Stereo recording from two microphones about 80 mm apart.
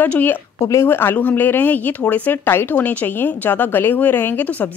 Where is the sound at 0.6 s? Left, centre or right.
Left.